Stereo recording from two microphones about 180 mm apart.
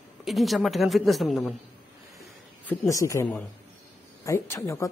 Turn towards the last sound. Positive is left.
turn(degrees=15)  # may be behind; listen again after turning